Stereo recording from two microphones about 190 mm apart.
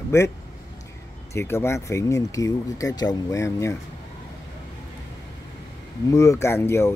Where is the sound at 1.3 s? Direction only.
15° left (ahead or behind).